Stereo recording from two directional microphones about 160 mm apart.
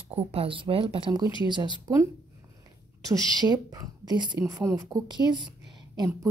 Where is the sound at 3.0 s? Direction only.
25° right (ahead or behind).